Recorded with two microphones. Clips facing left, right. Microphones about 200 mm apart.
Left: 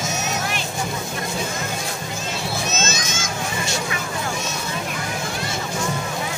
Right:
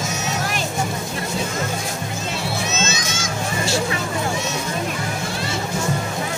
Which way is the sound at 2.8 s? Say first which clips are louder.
Right 1 dB; 45° left (ahead or behind).